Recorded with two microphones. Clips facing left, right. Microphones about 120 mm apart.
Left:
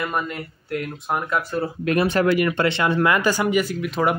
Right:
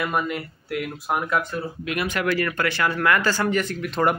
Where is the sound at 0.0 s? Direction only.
5° right (ahead or behind).